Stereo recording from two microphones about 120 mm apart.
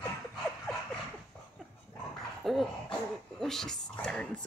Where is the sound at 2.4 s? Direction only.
5° left (ahead or behind).